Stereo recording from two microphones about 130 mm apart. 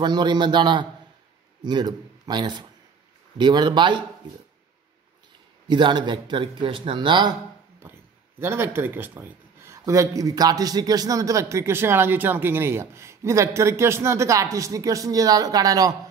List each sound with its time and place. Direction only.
0.0 s a man's voice: 35° right (ahead or behind)
5.7 s a man's voice: 35° right (ahead or behind)
8.4 s speech: 20° right (ahead or behind)